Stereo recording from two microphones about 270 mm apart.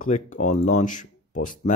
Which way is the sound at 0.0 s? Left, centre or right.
Left.